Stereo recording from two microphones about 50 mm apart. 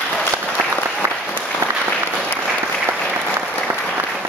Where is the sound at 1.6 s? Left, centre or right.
Right.